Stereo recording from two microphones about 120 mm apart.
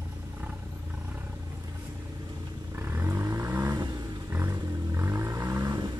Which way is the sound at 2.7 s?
20° right (ahead or behind).